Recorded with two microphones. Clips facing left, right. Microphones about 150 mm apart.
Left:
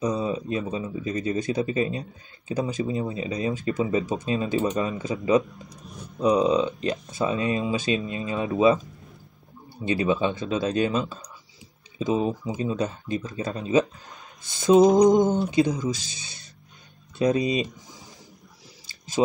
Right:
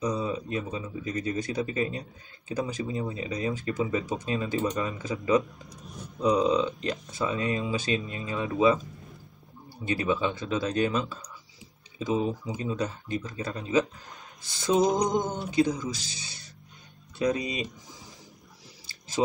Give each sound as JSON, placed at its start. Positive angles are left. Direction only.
{"t": 0.0, "sound": "speech", "side_deg": 25}
{"t": 9.8, "sound": "speech", "side_deg": 20}
{"t": 15.0, "sound": "speech", "side_deg": 20}
{"t": 17.2, "sound": "speech", "side_deg": 25}